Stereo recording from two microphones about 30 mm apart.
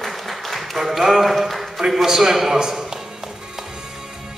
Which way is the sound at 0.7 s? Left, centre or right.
Centre.